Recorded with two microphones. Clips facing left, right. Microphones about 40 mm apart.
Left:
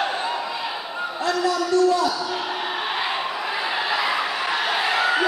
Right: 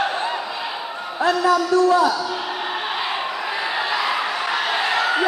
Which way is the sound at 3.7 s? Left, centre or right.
Centre.